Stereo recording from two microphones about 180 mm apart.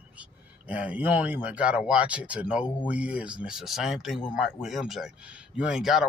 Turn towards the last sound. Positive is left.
turn(degrees=0)  # may be behind; listen again after turning